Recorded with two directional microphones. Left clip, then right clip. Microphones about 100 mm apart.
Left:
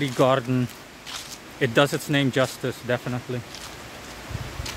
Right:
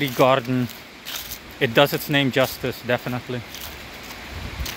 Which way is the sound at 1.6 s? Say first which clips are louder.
Right 3 dB; 25° left (ahead or behind).